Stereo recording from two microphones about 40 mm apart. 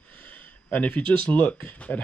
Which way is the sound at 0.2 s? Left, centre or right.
Left.